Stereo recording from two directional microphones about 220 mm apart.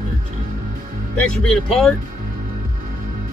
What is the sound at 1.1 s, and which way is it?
Speech, 5° left (ahead or behind).